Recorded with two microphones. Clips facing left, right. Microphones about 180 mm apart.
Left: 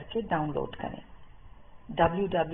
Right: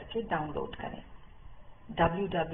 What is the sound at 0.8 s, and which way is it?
Speech, 45° left (ahead or behind).